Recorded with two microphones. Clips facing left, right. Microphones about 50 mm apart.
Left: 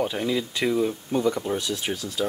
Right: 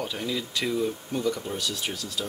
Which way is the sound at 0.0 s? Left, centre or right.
Centre.